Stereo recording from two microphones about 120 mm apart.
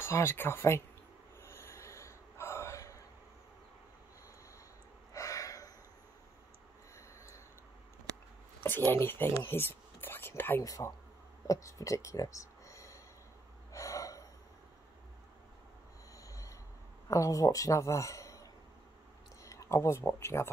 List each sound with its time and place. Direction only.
0.0 s speech: 20° left (ahead or behind)
1.4 s gasp: 20° left (ahead or behind)
5.1 s gasp: 25° left (ahead or behind)
8.5 s a sound: 15° left (ahead or behind)
8.9 s speech: 20° left (ahead or behind)
10.6 s speech: 30° left (ahead or behind)
13.7 s gasp: 25° left (ahead or behind)
16.2 s train wheels squealing: 30° left (ahead or behind)
17.1 s a man's voice: 30° left (ahead or behind)